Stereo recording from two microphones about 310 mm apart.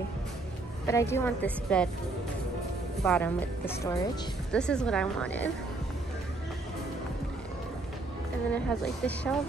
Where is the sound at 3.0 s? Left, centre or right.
Centre.